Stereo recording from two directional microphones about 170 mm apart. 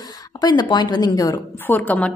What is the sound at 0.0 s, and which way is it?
A woman's voice, 20° left (ahead or behind).